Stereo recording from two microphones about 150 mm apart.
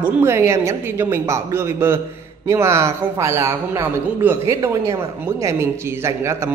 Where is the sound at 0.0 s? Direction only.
15° right (ahead or behind).